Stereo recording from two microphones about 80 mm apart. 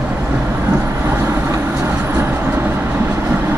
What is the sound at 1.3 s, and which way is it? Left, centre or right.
Vehicle, right.